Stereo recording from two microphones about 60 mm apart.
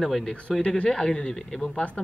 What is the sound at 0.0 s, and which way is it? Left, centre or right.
Speech, centre.